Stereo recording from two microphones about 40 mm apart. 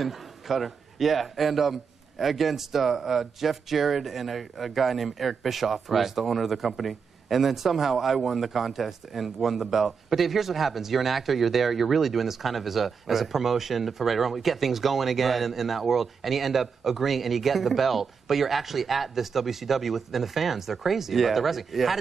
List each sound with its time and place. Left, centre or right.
0.0 s a man's voice: centre